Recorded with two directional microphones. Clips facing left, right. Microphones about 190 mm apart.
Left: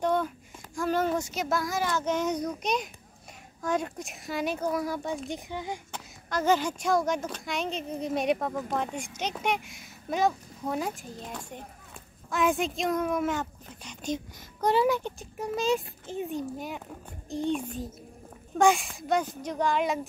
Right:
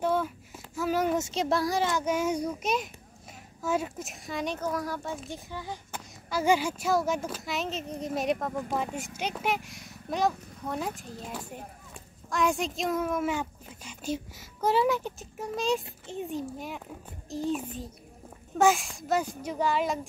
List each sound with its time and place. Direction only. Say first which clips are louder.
0.0 s a sound: left 1 dB; 5° right (ahead or behind)
1.1 s speech: right 2 dB; 25° right (ahead or behind)
1.9 s a child's voice: even; 10° right (ahead or behind); by 5.8 s 15° left (ahead or behind)
5.9 s speech: even; 5° right (ahead or behind)